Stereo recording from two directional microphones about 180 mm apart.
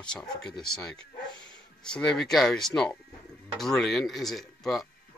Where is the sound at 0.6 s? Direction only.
5° left (ahead or behind).